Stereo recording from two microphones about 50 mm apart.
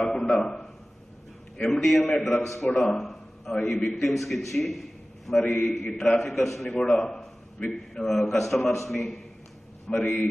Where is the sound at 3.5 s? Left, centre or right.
Centre.